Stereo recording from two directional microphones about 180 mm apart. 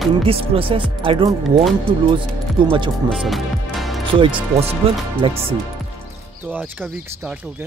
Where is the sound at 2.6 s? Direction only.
25° right (ahead or behind).